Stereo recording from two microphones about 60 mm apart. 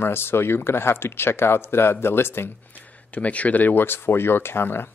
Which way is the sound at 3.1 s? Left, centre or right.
Left.